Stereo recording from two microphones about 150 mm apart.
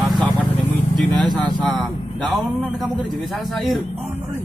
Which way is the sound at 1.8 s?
Centre (ahead or behind).